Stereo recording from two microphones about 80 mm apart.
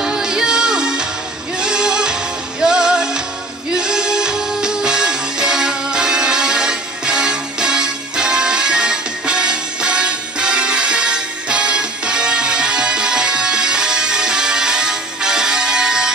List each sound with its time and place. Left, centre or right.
0.0 s music: centre